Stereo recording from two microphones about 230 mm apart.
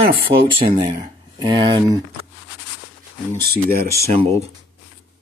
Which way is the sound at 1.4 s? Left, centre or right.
Right.